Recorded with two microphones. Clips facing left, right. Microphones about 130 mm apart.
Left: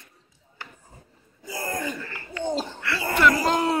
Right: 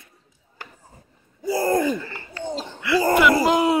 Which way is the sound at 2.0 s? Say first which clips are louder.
Right 1 dB; 35° right (ahead or behind).